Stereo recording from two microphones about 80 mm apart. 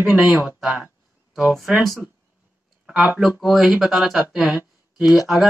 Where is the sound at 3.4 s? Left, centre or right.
Centre.